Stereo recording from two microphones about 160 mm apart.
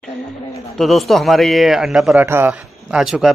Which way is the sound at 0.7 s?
Centre (ahead or behind).